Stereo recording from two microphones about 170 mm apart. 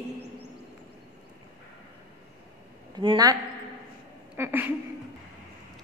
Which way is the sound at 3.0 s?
25° right (ahead or behind).